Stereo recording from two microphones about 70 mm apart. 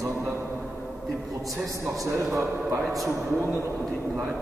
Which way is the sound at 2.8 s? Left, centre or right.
Centre.